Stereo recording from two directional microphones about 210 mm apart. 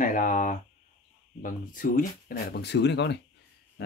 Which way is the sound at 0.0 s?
40° left (ahead or behind).